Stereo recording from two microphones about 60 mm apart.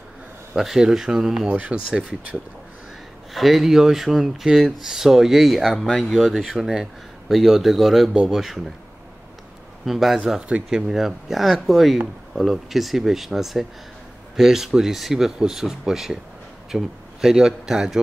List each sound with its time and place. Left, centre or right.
0.6 s speech: centre
1.5 s speech: right
3.3 s speech: centre
6.4 s speech: centre
8.1 s speech: centre
8.4 s speech: centre
9.8 s speech: centre